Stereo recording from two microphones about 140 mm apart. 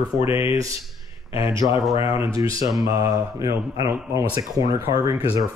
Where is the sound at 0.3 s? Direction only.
15° right (ahead or behind).